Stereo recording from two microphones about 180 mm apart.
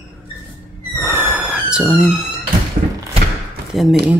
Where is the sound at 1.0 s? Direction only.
10° right (ahead or behind).